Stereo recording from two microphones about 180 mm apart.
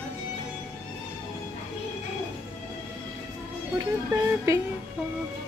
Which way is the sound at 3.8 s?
15° right (ahead or behind).